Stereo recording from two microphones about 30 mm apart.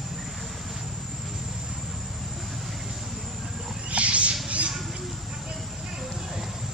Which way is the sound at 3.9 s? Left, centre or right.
Right.